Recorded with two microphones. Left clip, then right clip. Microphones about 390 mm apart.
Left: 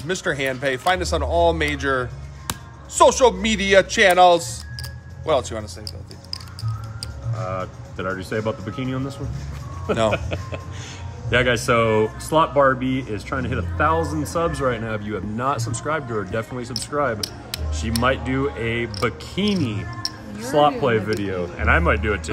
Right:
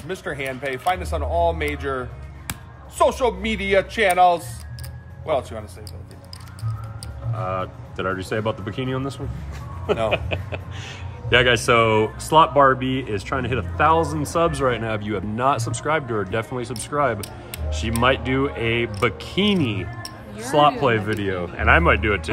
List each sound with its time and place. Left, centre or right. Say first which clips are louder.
0.1 s speech: left 5 dB; left
7.4 s speech: right 2 dB; right
10.1 s speech: right 2 dB; right